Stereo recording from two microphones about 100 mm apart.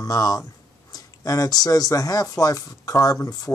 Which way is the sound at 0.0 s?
35° left (ahead or behind).